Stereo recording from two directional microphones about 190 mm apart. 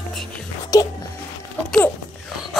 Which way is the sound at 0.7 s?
20° left (ahead or behind).